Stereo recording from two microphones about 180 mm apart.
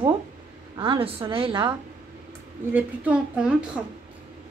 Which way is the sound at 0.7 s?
30° right (ahead or behind).